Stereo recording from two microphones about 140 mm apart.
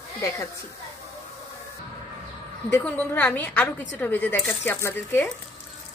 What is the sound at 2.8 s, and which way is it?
A woman's voice, 10° left (ahead or behind).